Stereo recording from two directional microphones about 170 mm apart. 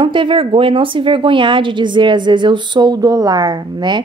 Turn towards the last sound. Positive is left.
turn(degrees=-25)  # may be behind; listen again after turning